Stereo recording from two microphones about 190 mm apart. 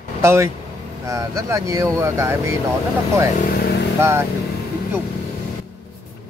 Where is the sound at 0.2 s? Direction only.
15° right (ahead or behind).